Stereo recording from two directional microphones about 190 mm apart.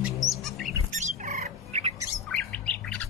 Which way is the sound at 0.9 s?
40° right (ahead or behind).